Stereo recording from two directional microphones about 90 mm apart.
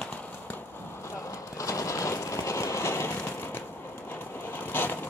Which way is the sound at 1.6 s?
35° left (ahead or behind).